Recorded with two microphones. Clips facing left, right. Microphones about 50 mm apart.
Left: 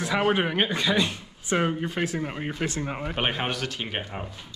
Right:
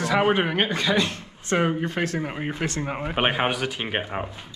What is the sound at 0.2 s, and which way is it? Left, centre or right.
Speech, right.